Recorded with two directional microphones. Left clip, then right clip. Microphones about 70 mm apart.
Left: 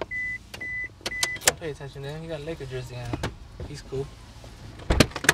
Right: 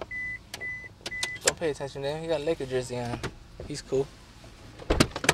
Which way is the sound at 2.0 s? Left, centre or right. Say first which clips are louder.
Right 7 dB; right.